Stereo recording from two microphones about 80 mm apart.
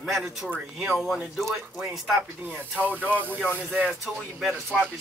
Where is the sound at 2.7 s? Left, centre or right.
Centre.